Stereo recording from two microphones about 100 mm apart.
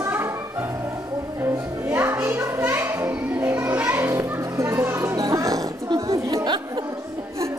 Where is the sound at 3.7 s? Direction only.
15° right (ahead or behind); by 6.2 s 40° right (ahead or behind).